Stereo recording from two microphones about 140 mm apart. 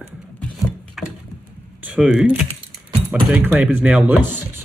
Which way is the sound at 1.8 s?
10° right (ahead or behind).